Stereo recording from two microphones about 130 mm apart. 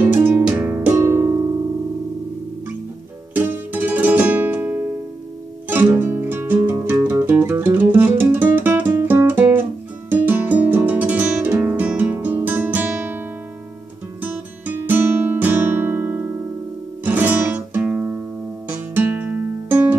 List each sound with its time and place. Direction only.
0.0 s music: 10° right (ahead or behind)
3.3 s music: 15° right (ahead or behind)
5.9 s music: 15° right (ahead or behind)
8.9 s guitar: 15° right (ahead or behind)
14.9 s guitar: 15° right (ahead or behind)
17.0 s music: 15° right (ahead or behind)